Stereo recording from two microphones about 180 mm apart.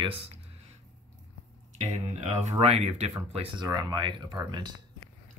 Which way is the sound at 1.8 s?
40° right (ahead or behind).